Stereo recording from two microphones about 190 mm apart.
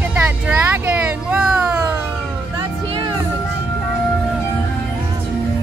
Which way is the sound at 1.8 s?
15° right (ahead or behind).